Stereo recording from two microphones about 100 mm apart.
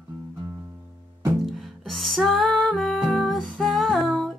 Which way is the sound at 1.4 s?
Centre (ahead or behind).